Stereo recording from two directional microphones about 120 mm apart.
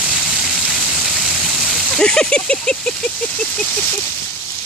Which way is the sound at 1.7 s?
5° left (ahead or behind).